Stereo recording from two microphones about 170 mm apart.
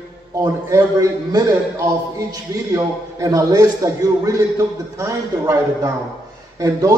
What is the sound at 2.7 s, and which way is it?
A man's voice, 20° right (ahead or behind).